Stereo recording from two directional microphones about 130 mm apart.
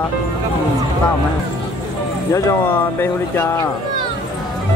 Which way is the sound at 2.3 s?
20° left (ahead or behind).